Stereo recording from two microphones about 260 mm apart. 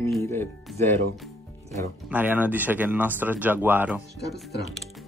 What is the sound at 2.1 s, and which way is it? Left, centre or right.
Speech, centre.